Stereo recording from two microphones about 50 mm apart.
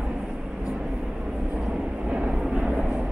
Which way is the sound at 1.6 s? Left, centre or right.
Centre.